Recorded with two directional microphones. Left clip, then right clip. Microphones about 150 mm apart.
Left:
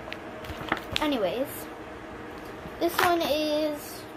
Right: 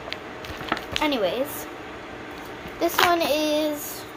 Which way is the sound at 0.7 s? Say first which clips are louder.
Right 3 dB; centre (ahead or behind).